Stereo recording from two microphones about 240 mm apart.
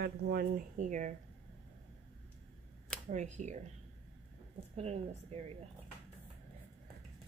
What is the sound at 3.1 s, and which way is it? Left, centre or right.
Speech, right.